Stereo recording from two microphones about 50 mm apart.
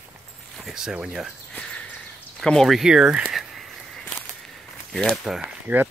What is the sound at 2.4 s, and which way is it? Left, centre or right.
Speech, centre.